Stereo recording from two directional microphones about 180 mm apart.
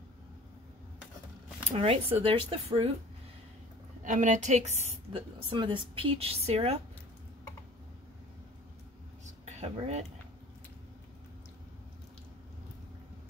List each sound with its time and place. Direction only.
1.7 s a woman's voice: 35° right (ahead or behind)
4.0 s a woman's voice: 45° right (ahead or behind)
9.2 s a sound: 40° right (ahead or behind)